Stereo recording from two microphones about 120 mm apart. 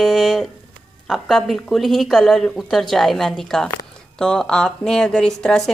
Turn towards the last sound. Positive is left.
turn(degrees=5)  # may be behind; listen again after turning